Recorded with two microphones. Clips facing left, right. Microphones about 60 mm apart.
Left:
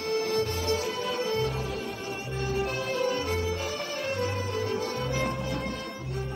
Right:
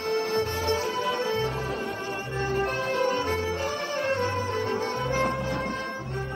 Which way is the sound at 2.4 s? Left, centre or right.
Right.